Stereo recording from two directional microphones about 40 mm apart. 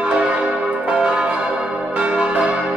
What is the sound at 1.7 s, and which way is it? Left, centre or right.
Change ringing, right.